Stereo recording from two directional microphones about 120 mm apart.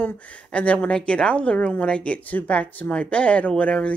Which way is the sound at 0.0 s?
10° left (ahead or behind).